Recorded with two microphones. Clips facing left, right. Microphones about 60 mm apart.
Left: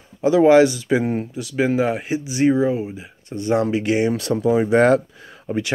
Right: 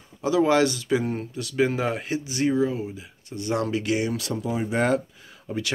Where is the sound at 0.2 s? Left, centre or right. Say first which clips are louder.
Left 7 dB; left.